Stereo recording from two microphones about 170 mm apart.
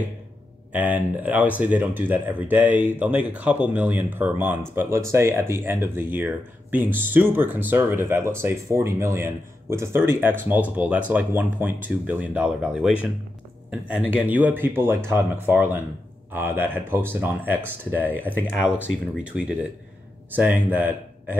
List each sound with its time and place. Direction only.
0.7 s speech: 10° right (ahead or behind)